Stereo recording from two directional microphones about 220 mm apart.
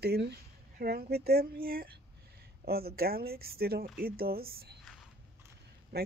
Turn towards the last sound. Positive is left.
turn(degrees=-45)  # may be behind; listen again after turning